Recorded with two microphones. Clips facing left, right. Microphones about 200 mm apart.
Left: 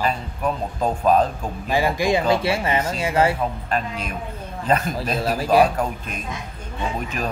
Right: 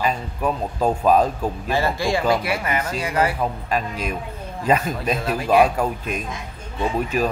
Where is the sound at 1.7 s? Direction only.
15° left (ahead or behind).